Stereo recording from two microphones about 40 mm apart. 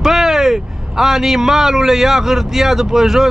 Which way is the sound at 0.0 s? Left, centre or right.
Centre.